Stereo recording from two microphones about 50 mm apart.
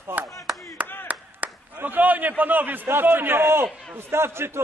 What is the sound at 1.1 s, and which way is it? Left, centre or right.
Clapping, right.